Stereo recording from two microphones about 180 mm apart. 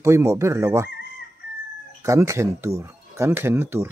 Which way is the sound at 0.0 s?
15° right (ahead or behind).